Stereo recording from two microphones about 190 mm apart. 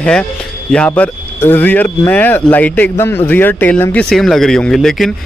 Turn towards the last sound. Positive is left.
turn(degrees=0)  # may be behind; listen again after turning